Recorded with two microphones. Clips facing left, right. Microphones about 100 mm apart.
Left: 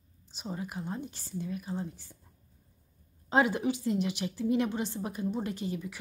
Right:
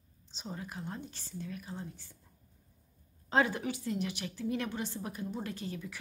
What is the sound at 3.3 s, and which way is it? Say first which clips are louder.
A woman's voice: left 3 dB; 15° left (ahead or behind).